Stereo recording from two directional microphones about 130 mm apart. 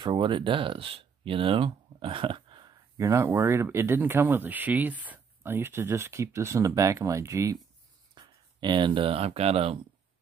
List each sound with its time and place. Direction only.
0.0 s speech: 40° right (ahead or behind)
3.0 s speech: 20° right (ahead or behind)
8.1 s speech: 35° right (ahead or behind)